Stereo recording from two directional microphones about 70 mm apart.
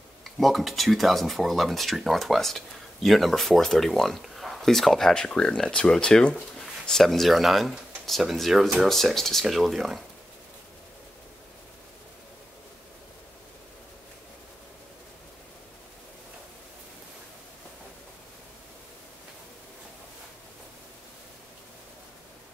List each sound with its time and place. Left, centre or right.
0.2 s speech: centre